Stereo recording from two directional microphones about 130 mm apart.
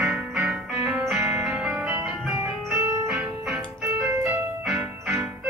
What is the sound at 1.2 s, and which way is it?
Music, 20° right (ahead or behind).